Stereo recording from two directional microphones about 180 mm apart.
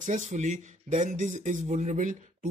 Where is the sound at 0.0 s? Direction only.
45° right (ahead or behind).